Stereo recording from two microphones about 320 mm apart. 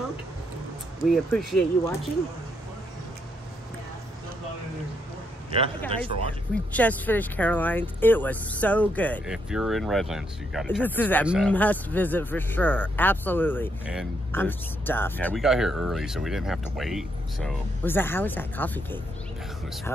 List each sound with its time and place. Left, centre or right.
1.1 s speech: centre
5.9 s speech: centre
6.7 s speech: centre